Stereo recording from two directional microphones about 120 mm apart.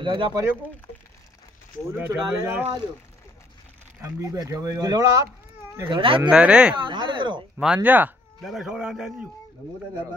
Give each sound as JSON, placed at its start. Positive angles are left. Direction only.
{"t": 0.0, "sound": "speech", "side_deg": -40}
{"t": 2.0, "sound": "speech", "side_deg": -20}
{"t": 4.0, "sound": "speech", "side_deg": -25}
{"t": 5.9, "sound": "speech", "side_deg": -45}
{"t": 6.3, "sound": "speech", "side_deg": -5}
{"t": 6.9, "sound": "speech", "side_deg": -40}
{"t": 7.5, "sound": "a man's voice", "side_deg": -10}